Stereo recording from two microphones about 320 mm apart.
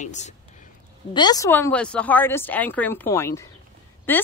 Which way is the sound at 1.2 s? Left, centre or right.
Centre.